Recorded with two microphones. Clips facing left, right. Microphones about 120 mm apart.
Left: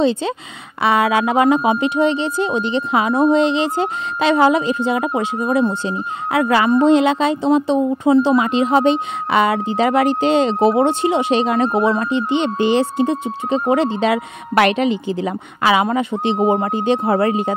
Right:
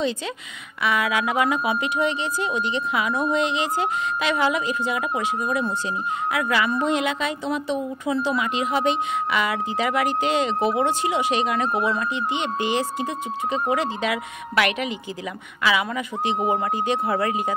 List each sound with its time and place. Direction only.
0.0 s speech: 30° left (ahead or behind)